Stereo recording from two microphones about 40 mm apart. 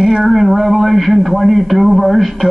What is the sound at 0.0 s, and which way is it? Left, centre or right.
Speech, centre.